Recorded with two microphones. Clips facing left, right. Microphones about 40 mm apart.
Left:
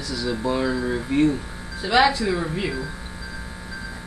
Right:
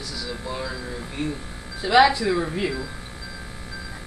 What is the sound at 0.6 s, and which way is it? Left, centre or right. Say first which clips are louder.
Speech: left 8 dB; left.